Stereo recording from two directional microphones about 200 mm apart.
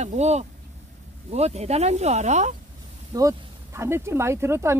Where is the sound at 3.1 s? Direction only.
15° right (ahead or behind).